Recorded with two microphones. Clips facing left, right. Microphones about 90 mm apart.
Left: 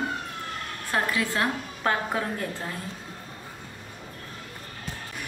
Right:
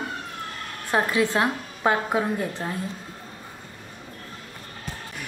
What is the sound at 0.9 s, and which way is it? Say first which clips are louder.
A woman's voice: right 5 dB; 20° right (ahead or behind).